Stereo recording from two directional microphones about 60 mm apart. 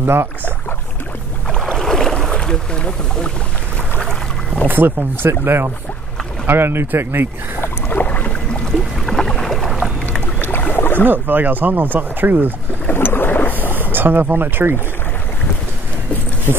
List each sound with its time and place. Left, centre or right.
0.0 s speech: right
1.5 s boat: centre
4.6 s speech: right
7.6 s boat: left
9.0 s boat: centre
10.4 s boat: left
11.1 s speech: right
12.9 s boat: left
13.6 s boat: right